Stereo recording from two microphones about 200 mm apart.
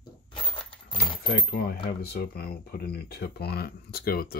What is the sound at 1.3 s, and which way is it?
Speech, 45° left (ahead or behind).